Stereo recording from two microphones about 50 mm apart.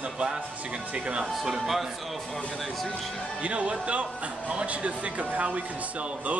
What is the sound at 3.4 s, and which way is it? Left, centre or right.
A man's voice, right.